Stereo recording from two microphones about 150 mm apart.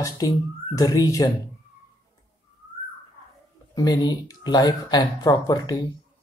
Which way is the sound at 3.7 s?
25° left (ahead or behind).